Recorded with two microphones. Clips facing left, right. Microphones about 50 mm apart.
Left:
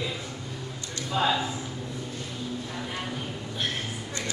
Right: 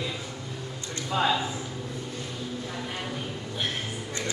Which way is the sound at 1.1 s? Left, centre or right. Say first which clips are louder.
Even; centre.